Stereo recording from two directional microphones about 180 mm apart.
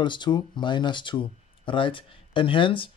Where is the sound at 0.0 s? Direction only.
25° left (ahead or behind).